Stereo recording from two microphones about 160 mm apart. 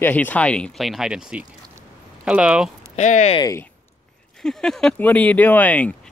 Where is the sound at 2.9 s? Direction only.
45° left (ahead or behind).